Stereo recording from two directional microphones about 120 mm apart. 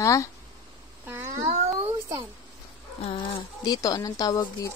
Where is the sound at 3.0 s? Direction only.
50° left (ahead or behind); by 4.7 s 30° left (ahead or behind).